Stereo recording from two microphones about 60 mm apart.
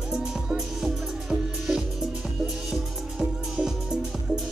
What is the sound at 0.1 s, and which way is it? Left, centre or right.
Music, centre.